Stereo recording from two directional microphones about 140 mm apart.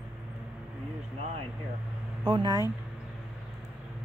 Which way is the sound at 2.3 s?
35° right (ahead or behind).